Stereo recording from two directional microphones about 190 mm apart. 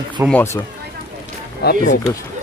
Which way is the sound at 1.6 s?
60° left (ahead or behind).